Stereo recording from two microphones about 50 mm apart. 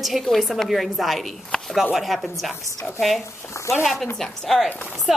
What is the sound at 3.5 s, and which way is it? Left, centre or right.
Speech, left.